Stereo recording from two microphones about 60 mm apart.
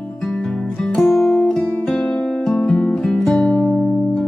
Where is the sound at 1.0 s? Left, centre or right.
Centre.